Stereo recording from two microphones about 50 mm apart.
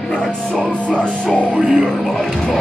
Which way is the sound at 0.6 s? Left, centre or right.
Left.